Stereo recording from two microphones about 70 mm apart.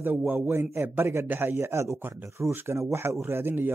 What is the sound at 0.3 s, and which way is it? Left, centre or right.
A man's voice, right.